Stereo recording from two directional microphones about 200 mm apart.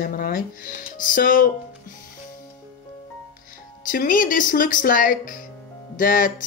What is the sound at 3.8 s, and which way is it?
Speech, 45° left (ahead or behind).